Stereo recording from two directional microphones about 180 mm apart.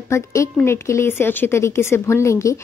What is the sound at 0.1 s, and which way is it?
A woman's voice, 15° left (ahead or behind).